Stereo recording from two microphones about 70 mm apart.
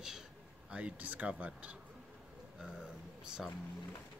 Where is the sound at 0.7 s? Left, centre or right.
Right.